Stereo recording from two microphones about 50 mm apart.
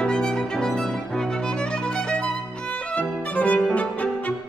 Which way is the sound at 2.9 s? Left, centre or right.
Left.